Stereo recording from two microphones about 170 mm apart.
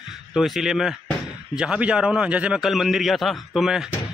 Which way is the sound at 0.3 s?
Centre (ahead or behind).